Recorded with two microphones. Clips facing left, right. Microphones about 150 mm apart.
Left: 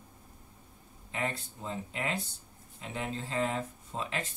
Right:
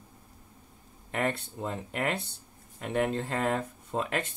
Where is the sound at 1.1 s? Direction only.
60° right (ahead or behind).